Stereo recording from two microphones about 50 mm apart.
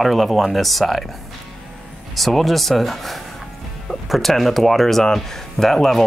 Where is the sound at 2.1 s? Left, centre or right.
Centre.